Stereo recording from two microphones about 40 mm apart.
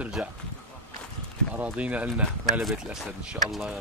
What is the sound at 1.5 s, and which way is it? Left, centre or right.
Speech, right.